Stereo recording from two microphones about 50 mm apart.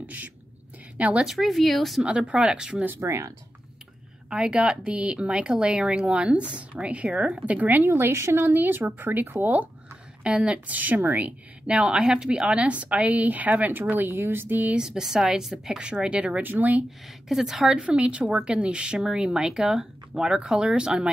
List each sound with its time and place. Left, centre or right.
0.0 s a woman's voice: right
1.2 s speech: centre
2.0 s speech: right
2.8 s speech: right
3.1 s speech: right
4.3 s speech: centre
7.8 s a woman's voice: right
10.2 s speech: right
10.7 s a woman's voice: right
14.8 s speech: centre
16.4 s a woman's voice: right
17.3 s speech: centre
17.6 s speech: right